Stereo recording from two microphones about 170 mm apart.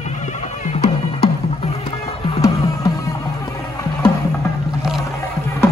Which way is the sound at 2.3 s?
20° left (ahead or behind).